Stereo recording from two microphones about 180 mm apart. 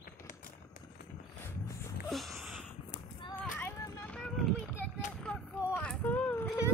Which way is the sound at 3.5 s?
15° left (ahead or behind).